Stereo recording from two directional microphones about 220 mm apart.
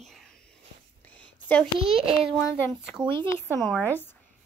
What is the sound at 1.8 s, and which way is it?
Speech, 25° right (ahead or behind).